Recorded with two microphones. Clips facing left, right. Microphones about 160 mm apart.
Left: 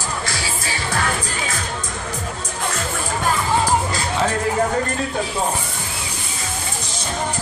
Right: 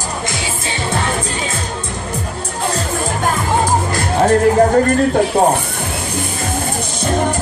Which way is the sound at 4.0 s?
45° right (ahead or behind).